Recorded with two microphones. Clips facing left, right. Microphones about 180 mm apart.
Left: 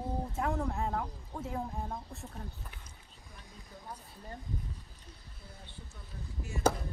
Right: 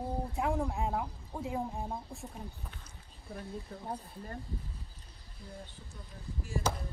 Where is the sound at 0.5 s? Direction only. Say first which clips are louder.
Right 1 dB; 10° right (ahead or behind).